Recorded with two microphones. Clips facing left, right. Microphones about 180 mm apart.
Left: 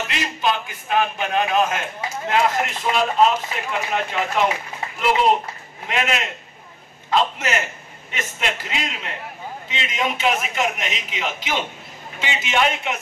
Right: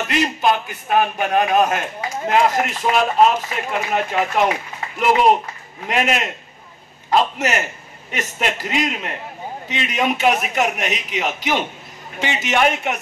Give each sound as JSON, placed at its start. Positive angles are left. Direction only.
{"t": 0.1, "sound": "a man's voice", "side_deg": -50}
{"t": 5.9, "sound": "a man's voice", "side_deg": -45}